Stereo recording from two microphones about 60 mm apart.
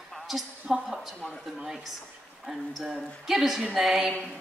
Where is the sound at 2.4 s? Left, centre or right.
Centre.